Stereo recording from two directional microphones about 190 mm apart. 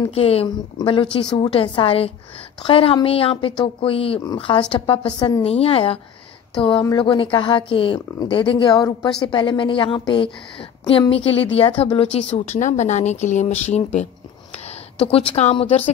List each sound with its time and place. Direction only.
0.1 s speech: 30° left (ahead or behind)
14.5 s a sound: 35° left (ahead or behind)
15.3 s speech: 35° left (ahead or behind)